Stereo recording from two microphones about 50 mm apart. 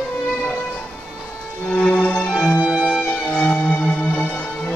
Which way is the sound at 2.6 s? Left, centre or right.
Centre.